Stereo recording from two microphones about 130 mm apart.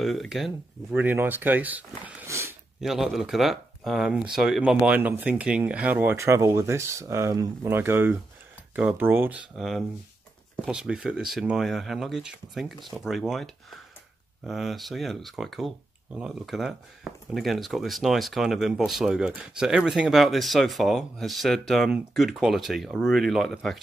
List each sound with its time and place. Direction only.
0.0 s speech: centre (ahead or behind)
0.9 s speech: 15° right (ahead or behind)
2.2 s a sound: 20° right (ahead or behind)
2.8 s speech: centre (ahead or behind)
9.6 s speech: centre (ahead or behind)